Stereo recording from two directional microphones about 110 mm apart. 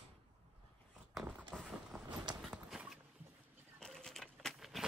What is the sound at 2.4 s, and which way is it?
Clip-clop, 5° right (ahead or behind).